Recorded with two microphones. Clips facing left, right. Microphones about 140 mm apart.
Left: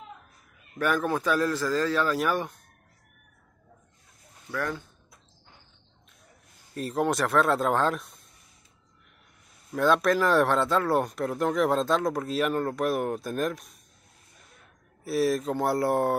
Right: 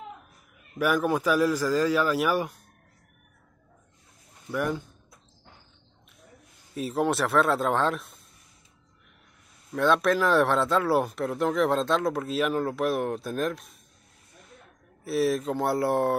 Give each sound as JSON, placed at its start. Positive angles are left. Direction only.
{"t": 0.7, "sound": "a man's voice", "side_deg": -10}
{"t": 4.5, "sound": "a man's voice", "side_deg": -15}
{"t": 6.7, "sound": "speech", "side_deg": 0}
{"t": 9.7, "sound": "speech", "side_deg": 0}
{"t": 15.0, "sound": "speech", "side_deg": 0}